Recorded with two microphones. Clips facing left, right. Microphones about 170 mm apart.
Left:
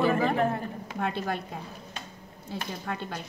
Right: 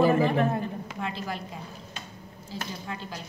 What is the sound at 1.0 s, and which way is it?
A woman's voice, 60° left (ahead or behind).